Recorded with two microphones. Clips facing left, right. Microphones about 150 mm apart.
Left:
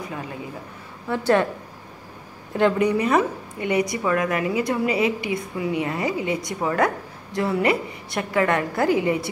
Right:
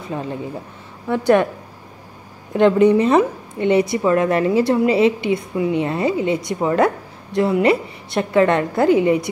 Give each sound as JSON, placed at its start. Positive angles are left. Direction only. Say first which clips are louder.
{"t": 1.0, "sound": "a woman's voice", "louder": "right 4 dB", "side_deg": -15}
{"t": 2.5, "sound": "a woman's voice", "louder": "right 7 dB", "side_deg": -20}